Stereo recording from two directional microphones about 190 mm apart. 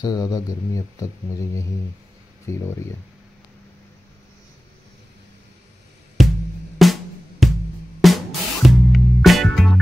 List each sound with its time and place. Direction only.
0.0 s speech: 20° left (ahead or behind)
2.5 s speech: 15° left (ahead or behind)
6.2 s music: centre (ahead or behind)